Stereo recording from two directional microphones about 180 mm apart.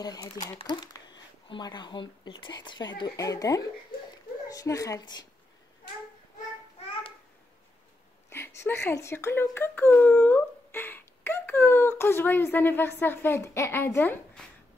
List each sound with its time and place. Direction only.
0.0 s speech: 20° left (ahead or behind)
8.3 s speech: 15° left (ahead or behind)